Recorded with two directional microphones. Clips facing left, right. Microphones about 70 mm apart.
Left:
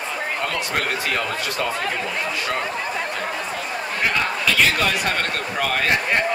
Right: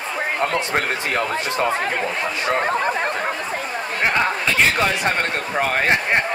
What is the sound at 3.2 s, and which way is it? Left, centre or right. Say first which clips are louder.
Speech: right 2 dB; right.